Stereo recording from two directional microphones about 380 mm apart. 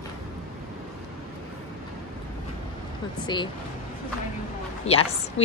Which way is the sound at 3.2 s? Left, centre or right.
Centre.